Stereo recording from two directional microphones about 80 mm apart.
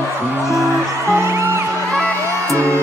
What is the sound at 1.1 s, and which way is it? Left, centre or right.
Music, right.